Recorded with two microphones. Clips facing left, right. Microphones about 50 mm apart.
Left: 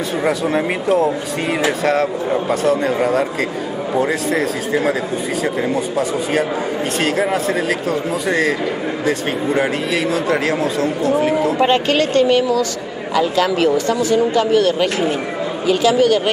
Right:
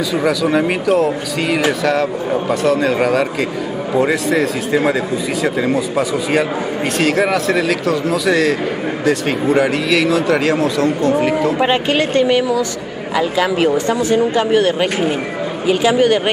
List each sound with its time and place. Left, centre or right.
0.2 s speech: right
2.6 s a man's voice: right
9.6 s a man's voice: right
11.5 s speech: centre
13.8 s speech: right